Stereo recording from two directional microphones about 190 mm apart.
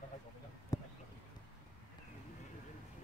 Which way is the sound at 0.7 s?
20° left (ahead or behind).